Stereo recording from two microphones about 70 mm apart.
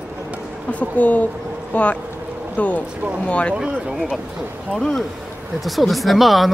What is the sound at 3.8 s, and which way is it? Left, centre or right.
Speech, centre.